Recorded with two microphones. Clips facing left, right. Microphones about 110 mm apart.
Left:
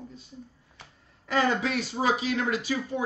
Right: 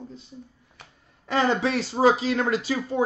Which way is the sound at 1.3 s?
25° right (ahead or behind).